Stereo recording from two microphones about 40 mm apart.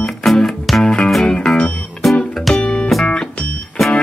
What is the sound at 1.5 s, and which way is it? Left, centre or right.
Music, centre.